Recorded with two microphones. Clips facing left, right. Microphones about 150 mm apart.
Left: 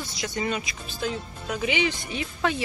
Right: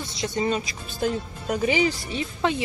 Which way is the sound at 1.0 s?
40° right (ahead or behind).